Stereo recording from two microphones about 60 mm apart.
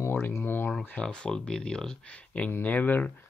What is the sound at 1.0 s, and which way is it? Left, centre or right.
Speech, centre.